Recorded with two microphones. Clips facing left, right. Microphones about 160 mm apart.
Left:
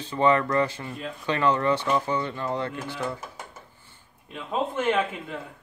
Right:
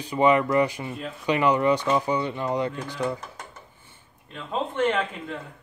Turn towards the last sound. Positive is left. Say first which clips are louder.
# even
turn(degrees=5)  # may be behind; listen again after turning